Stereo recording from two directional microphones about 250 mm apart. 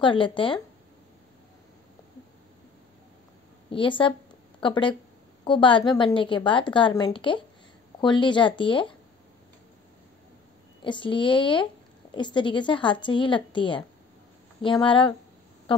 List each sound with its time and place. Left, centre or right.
0.0 s a woman's voice: centre
3.7 s a woman's voice: centre
10.8 s a woman's voice: centre